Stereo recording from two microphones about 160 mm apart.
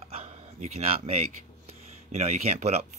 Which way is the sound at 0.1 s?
40° right (ahead or behind).